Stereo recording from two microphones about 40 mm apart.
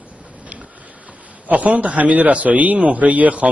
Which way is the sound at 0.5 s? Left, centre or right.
Right.